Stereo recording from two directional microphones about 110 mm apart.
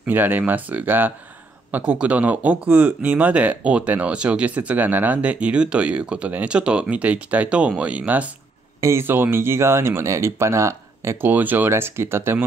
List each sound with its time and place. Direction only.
0.0 s speech: 15° right (ahead or behind)